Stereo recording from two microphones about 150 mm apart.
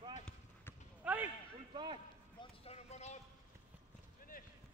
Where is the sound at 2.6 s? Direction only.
45° left (ahead or behind).